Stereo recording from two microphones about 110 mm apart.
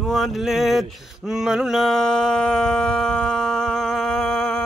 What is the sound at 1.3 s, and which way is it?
Mantra, 5° right (ahead or behind).